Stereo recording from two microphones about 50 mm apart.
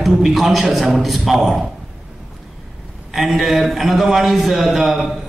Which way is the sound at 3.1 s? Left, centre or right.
Centre.